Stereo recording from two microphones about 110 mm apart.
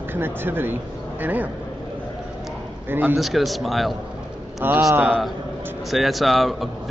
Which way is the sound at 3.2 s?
Centre (ahead or behind).